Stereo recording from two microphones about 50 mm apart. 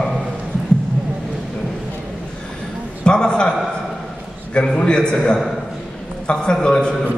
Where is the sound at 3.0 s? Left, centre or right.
Centre.